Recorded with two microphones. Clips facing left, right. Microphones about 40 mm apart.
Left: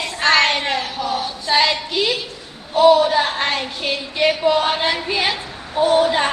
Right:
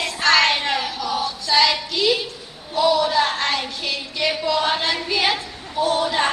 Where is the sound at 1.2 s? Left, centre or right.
Left.